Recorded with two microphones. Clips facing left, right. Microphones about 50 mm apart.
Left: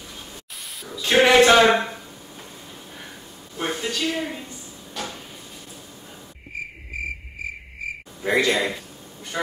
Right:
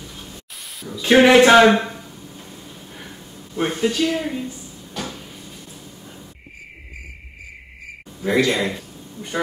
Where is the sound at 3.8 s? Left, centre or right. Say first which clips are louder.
Right 7 dB; centre.